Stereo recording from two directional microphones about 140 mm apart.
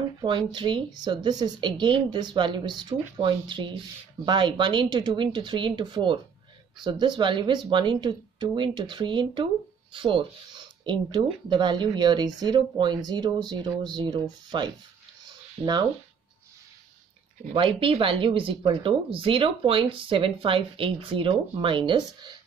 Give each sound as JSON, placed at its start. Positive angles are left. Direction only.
{"t": 0.2, "sound": "speech", "side_deg": -35}
{"t": 15.2, "sound": "a sound", "side_deg": -30}
{"t": 17.5, "sound": "speech", "side_deg": -40}